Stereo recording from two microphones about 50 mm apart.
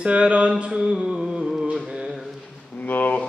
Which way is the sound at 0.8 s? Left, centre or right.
Centre.